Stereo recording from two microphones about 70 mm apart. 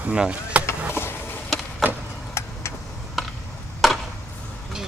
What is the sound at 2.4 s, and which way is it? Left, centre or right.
Vehicle, left.